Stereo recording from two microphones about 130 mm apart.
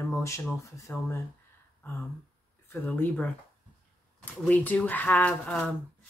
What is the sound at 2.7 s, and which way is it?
Speech, 15° left (ahead or behind).